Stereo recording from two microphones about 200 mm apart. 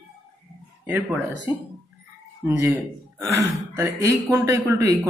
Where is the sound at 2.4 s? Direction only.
15° right (ahead or behind).